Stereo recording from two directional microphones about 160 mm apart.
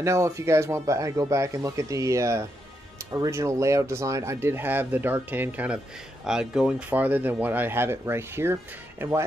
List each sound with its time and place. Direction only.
0.0 s speech: 20° right (ahead or behind)